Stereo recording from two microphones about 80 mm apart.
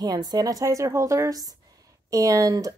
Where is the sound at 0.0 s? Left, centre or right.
Right.